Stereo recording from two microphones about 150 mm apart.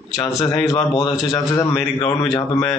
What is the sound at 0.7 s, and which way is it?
A man's voice, 20° left (ahead or behind).